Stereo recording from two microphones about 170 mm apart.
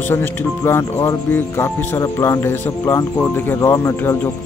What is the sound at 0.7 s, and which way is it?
Speech, 15° left (ahead or behind).